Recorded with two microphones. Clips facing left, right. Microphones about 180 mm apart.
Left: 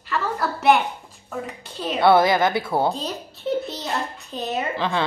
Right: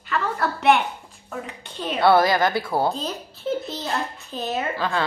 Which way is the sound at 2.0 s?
20° left (ahead or behind).